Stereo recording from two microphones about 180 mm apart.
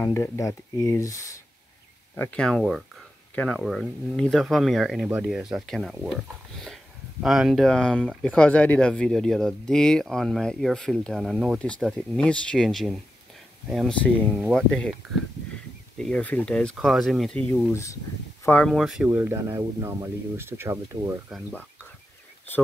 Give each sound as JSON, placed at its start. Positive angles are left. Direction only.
{"t": 0.0, "sound": "speech", "side_deg": 15}
{"t": 16.0, "sound": "speech", "side_deg": 5}
{"t": 21.3, "sound": "speech", "side_deg": 0}